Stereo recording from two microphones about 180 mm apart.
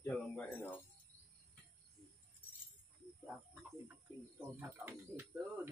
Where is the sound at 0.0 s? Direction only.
10° left (ahead or behind).